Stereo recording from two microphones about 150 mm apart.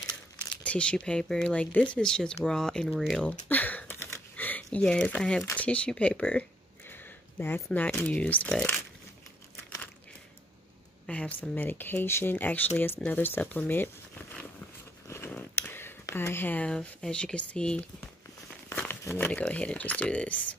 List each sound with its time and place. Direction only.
0.7 s speech: 5° left (ahead or behind)
4.1 s a sound: 10° left (ahead or behind)
5.4 s speech: 10° left (ahead or behind)
6.9 s a sound: 15° left (ahead or behind)
7.7 s speech: 10° left (ahead or behind)
11.1 s speech: 10° left (ahead or behind)
15.0 s zipper: 15° left (ahead or behind)
18.7 s crumpling: 15° left (ahead or behind)
19.1 s speech: 10° left (ahead or behind)